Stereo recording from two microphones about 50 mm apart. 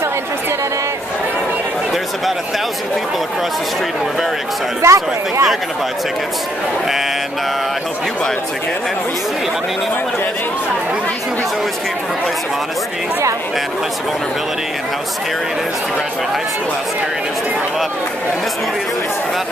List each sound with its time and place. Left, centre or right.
4.8 s speech: right